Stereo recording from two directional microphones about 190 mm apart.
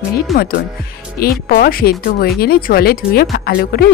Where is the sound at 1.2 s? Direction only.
50° left (ahead or behind).